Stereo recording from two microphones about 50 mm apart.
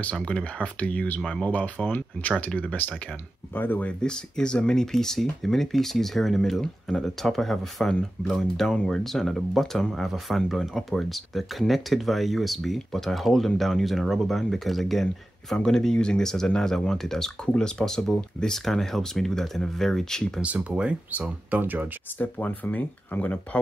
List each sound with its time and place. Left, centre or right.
0.0 s speech: left
3.5 s speech: left
4.0 s speech: centre
15.5 s speech: centre
20.4 s speech: right
22.2 s speech: left